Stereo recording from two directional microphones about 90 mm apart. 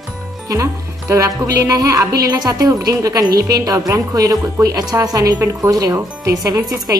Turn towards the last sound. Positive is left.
turn(degrees=-45)  # may be behind; listen again after turning